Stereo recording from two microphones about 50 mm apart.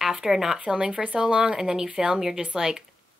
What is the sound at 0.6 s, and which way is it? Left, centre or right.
Speech, centre.